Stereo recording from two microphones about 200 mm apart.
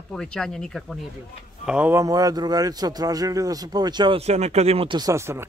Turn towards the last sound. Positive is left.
turn(degrees=-15)  # may be behind; listen again after turning